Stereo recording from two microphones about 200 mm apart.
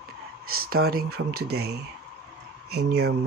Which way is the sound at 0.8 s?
50° right (ahead or behind).